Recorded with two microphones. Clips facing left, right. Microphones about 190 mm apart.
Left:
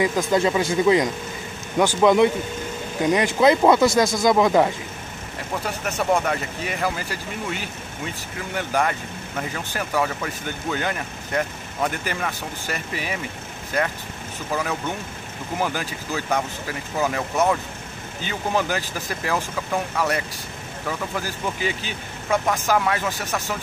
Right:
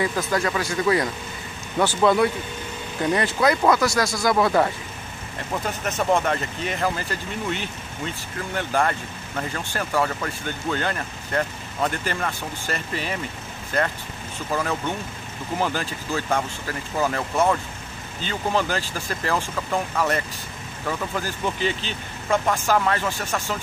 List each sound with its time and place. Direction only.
0.3 s speech: 20° left (ahead or behind)
6.1 s speech: 5° left (ahead or behind)
14.5 s speech: 10° left (ahead or behind)